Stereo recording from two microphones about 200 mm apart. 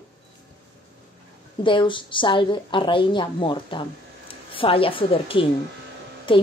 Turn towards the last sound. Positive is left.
turn(degrees=25)  # may be behind; listen again after turning